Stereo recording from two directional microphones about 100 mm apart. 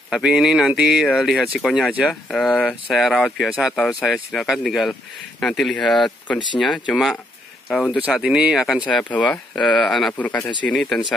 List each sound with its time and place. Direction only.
0.1 s speech: 5° right (ahead or behind)
3.4 s speech: 5° right (ahead or behind)
8.8 s speech: 10° left (ahead or behind)
10.1 s speech: 15° left (ahead or behind)